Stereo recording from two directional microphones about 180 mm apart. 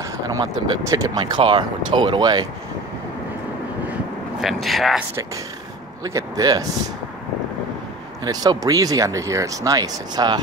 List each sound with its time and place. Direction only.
0.0 s speech: 20° right (ahead or behind)
4.4 s speech: centre (ahead or behind)
6.0 s speech: 20° right (ahead or behind)
8.2 s speech: 20° right (ahead or behind)